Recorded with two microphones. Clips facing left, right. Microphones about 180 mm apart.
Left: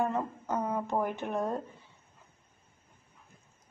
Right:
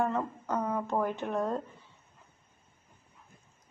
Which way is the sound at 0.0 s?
15° left (ahead or behind).